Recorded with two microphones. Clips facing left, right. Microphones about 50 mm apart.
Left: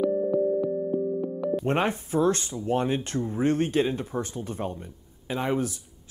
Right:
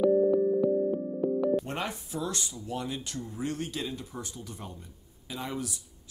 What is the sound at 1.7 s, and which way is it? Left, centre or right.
Speech, left.